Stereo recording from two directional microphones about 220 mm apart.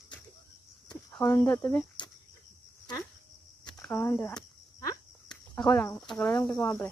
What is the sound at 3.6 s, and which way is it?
Cricket, 10° left (ahead or behind).